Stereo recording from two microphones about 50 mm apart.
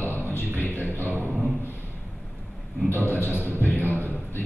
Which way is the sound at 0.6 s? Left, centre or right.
Left.